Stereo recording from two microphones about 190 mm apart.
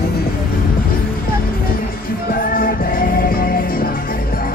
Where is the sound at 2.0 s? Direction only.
50° left (ahead or behind).